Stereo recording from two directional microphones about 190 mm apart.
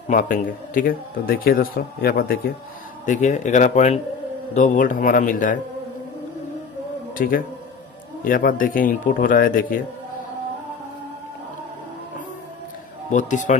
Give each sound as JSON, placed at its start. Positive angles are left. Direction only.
{"t": 0.1, "sound": "a man's voice", "side_deg": 45}
{"t": 3.1, "sound": "a man's voice", "side_deg": 40}
{"t": 7.2, "sound": "a man's voice", "side_deg": 45}
{"t": 13.1, "sound": "speech", "side_deg": 40}